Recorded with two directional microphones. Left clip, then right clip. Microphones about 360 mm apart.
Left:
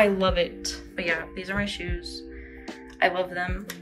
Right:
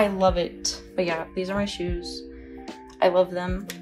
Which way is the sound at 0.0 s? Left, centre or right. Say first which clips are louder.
Even; centre.